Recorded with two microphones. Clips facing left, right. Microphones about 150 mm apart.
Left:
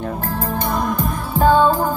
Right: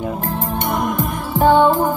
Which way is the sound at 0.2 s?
20° right (ahead or behind).